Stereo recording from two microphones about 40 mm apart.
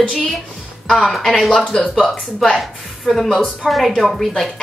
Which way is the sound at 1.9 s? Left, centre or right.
Centre.